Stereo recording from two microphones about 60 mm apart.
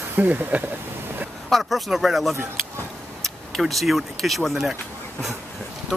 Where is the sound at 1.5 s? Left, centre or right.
Centre.